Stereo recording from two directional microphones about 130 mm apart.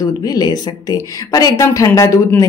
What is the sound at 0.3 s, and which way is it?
Speech, 30° left (ahead or behind).